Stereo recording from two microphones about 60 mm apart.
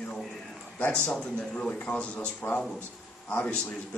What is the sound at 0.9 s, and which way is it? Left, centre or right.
A man's voice, centre.